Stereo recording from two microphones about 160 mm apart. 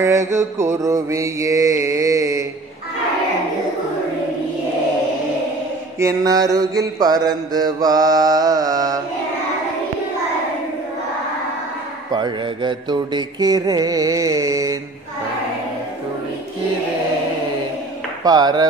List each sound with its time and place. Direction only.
0.0 s mantra: 20° right (ahead or behind)
5.9 s mantra: 20° right (ahead or behind)
12.1 s mantra: 30° right (ahead or behind)
18.2 s mantra: 25° right (ahead or behind)